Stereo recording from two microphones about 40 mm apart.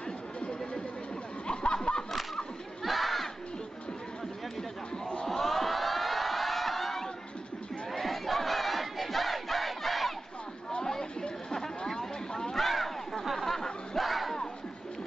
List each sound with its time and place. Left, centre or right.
0.4 s music: left
1.5 s snicker: left
2.8 s battle cry: centre
5.2 s a sound: centre
7.9 s battle cry: centre
10.9 s chatter: centre
13.9 s a sound: centre